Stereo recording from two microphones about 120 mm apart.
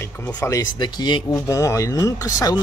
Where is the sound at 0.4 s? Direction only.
35° left (ahead or behind).